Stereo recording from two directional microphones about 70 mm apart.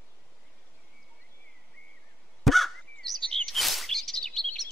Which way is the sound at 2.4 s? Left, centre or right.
Centre.